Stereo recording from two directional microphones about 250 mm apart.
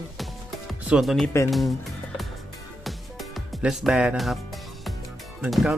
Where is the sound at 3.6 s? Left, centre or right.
Centre.